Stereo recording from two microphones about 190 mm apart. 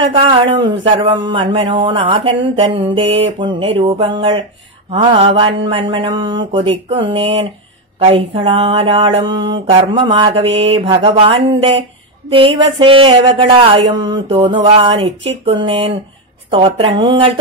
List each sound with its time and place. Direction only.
0.0 s speech: 25° right (ahead or behind)